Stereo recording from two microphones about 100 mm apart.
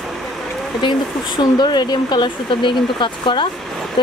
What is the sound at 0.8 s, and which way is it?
Speech, 50° left (ahead or behind).